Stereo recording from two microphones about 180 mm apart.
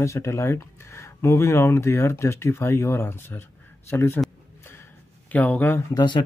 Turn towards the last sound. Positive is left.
turn(degrees=25)  # may be behind; listen again after turning